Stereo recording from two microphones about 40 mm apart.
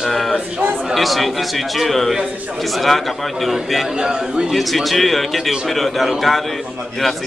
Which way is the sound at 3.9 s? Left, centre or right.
Centre.